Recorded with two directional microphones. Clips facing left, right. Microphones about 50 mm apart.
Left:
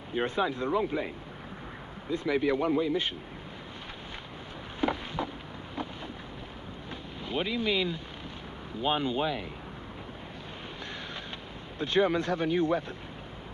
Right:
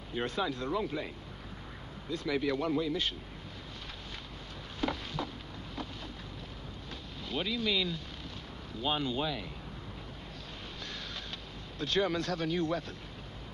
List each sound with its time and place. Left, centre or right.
0.1 s speech: left
4.7 s a sound: left
7.2 s speech: left
11.8 s speech: left